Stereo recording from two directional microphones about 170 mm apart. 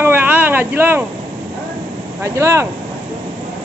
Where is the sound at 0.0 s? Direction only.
10° right (ahead or behind).